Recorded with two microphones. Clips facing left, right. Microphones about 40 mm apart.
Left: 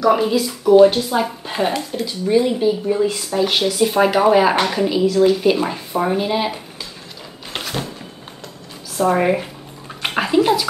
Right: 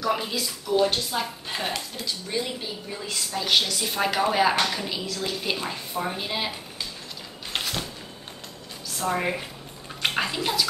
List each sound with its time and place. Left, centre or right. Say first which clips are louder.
0.0 s speech: left 11 dB; centre
0.5 s speech: left 13 dB; left
0.8 s speech: left 11 dB; centre
4.6 s speech: left 7 dB; left
4.8 s speech: left 16 dB; centre
9.0 s speech: left 10 dB; centre
10.0 s bathtub: left 10 dB; centre